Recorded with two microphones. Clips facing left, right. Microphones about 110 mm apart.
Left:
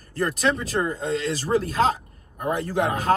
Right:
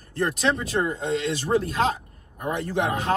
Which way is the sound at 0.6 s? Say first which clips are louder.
Even; 35° left (ahead or behind).